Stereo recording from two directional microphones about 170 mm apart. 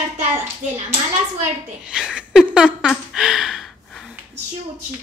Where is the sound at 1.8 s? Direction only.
5° right (ahead or behind).